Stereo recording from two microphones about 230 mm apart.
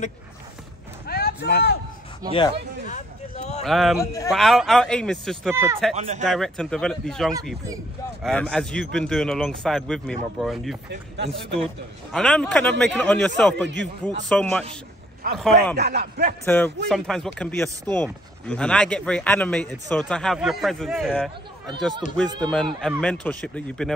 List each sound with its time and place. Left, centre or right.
1.0 s a sound: left
2.2 s speech: centre
2.9 s vehicle: left
3.6 s speech: centre
4.0 s a man's voice: centre
4.3 s speech: centre
5.5 s speech: centre
5.9 s speech: right
6.2 s speech: centre
15.7 s speech: right
16.4 s speech: centre
22.0 s a man's voice: left
22.4 s speech: centre